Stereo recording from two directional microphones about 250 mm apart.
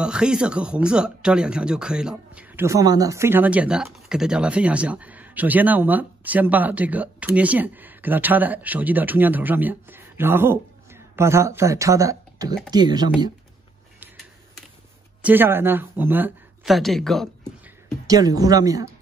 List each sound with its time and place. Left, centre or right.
0.0 s speech: centre
15.2 s speech: centre
18.0 s speech: centre